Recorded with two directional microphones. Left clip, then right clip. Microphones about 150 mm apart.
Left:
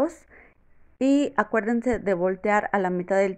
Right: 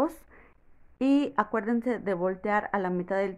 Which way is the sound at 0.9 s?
10° left (ahead or behind).